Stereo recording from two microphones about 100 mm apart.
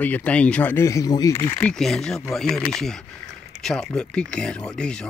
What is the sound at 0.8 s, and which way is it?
Speech, 35° left (ahead or behind).